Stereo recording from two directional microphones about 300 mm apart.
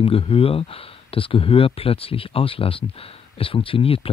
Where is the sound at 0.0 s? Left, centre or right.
Centre.